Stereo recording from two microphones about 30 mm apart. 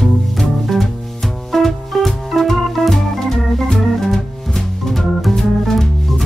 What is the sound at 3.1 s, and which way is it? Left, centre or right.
Organ, centre.